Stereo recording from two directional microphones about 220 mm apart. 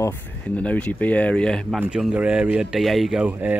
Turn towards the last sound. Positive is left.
turn(degrees=-5)  # may be behind; listen again after turning